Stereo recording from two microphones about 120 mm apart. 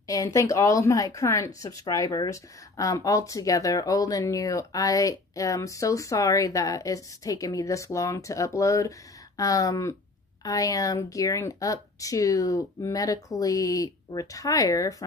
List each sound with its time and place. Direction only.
0.0 s a woman's voice: 30° left (ahead or behind)